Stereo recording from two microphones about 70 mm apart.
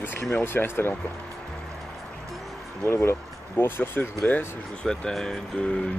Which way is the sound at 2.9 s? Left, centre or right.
Left.